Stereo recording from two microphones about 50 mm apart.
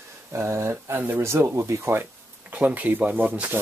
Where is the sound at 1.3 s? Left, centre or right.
Right.